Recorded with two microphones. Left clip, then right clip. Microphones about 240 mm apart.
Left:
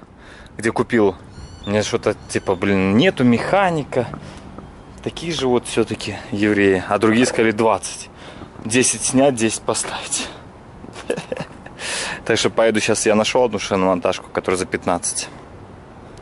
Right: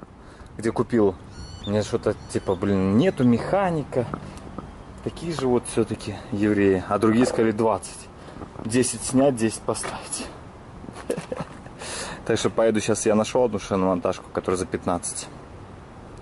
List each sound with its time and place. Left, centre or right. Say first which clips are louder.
0.8 s speech: left 3 dB; centre